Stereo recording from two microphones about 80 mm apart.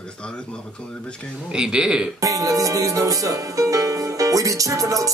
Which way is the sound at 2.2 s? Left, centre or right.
Right.